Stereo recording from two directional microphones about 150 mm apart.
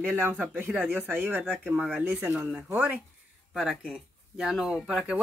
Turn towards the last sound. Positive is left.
turn(degrees=-5)  # may be behind; listen again after turning